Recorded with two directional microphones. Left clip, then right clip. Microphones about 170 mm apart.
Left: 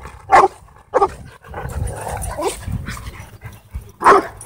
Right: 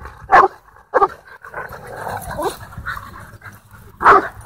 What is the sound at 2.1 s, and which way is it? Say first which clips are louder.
Dog: even; 5° right (ahead or behind).